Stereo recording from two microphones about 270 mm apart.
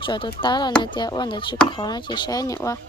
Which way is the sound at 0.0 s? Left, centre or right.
Centre.